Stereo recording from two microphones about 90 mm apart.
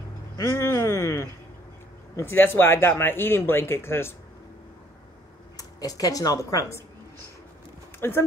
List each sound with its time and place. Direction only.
0.4 s speech: 30° left (ahead or behind)
5.6 s speech: 40° left (ahead or behind)
8.0 s speech: 25° left (ahead or behind)